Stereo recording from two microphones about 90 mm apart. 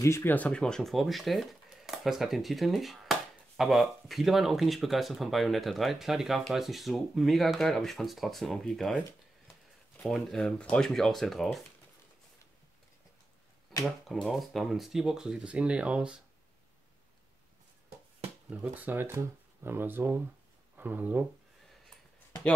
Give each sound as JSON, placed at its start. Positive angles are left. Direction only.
{"t": 0.0, "sound": "speech", "side_deg": 25}
{"t": 10.0, "sound": "speech", "side_deg": 5}
{"t": 14.2, "sound": "speech", "side_deg": 0}
{"t": 18.5, "sound": "speech", "side_deg": -20}